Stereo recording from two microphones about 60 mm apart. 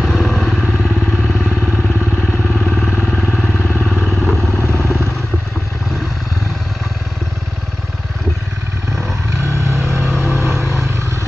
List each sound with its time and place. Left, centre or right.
0.0 s motorcycle: centre
2.6 s vehicle: centre
3.5 s vehicle: left
3.9 s vehicle: centre
4.6 s vehicle: left
9.4 s vehicle: right